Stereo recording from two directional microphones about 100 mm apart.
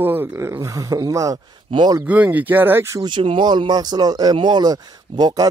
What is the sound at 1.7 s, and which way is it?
Speech, 45° right (ahead or behind).